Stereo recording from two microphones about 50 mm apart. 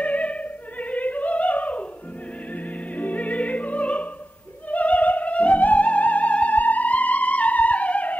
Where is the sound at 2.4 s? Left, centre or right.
Left.